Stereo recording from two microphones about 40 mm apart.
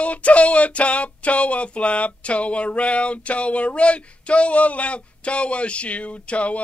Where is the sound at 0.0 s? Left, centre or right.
Left.